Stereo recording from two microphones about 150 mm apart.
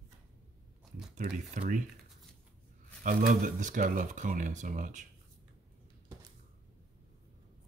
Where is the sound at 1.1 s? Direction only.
50° right (ahead or behind).